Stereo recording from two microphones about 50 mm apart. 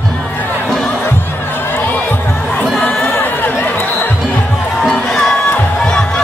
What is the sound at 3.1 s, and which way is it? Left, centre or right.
Music, left.